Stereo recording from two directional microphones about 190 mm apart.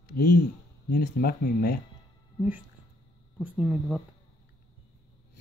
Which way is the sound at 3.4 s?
5° right (ahead or behind).